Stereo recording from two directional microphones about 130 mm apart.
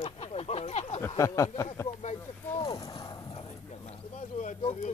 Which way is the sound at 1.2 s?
25° left (ahead or behind).